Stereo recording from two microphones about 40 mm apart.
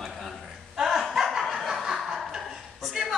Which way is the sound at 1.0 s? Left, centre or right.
Centre.